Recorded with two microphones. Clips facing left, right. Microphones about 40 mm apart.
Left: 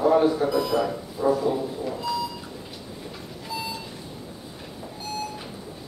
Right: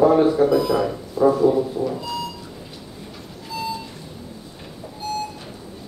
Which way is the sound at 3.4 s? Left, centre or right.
Centre.